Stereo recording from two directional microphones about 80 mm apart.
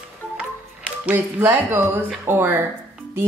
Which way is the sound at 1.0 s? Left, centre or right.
Right.